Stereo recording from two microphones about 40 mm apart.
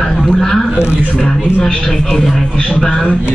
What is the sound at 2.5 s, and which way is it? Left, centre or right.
Speech, left.